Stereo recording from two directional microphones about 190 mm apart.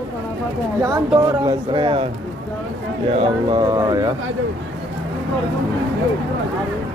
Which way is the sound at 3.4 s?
20° right (ahead or behind).